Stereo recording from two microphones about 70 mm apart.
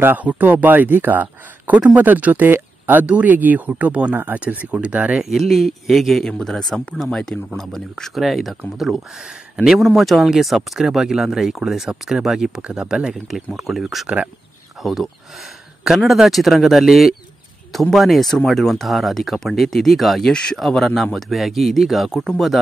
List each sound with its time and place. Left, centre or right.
0.0 s speech: right
5.2 s speech: centre
14.0 s speech: centre
14.8 s speech: centre